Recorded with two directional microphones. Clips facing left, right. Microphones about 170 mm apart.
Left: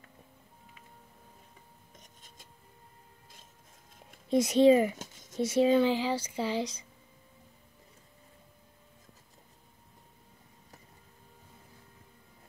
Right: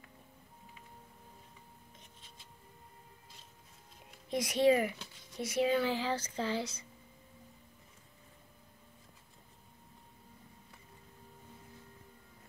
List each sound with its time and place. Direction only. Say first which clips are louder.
2.0 s writing: left 2 dB; 45° left (ahead or behind)
4.3 s speech: left 6 dB; 25° left (ahead or behind)
4.9 s a sound: left 5 dB; 45° left (ahead or behind)
5.4 s speech: left 7 dB; 25° left (ahead or behind)